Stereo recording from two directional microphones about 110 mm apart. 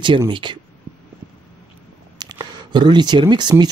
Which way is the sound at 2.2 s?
40° right (ahead or behind).